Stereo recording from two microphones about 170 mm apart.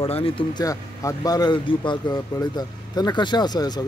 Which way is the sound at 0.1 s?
30° left (ahead or behind).